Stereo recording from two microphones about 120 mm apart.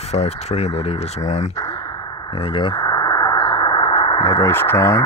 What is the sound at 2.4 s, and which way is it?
Speech, 45° left (ahead or behind).